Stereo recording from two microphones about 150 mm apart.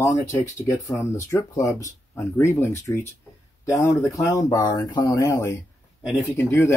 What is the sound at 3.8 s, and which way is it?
Speech, 20° left (ahead or behind).